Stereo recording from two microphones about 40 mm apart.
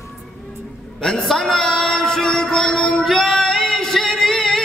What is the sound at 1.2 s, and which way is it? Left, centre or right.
Music, centre.